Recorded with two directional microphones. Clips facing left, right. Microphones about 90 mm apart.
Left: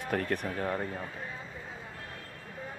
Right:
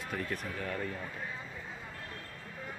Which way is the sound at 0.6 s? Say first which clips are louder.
Left 4 dB; 30° left (ahead or behind).